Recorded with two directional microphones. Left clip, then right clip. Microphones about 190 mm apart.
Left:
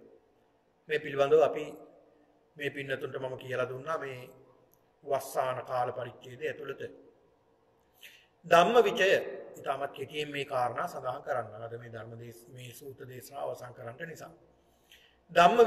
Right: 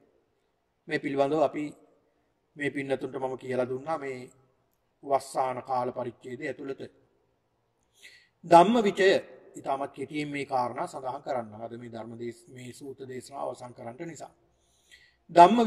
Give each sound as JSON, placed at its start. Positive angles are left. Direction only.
{"t": 0.8, "sound": "a man's voice", "side_deg": -45}
{"t": 8.0, "sound": "a man's voice", "side_deg": -45}
{"t": 14.9, "sound": "a sound", "side_deg": -45}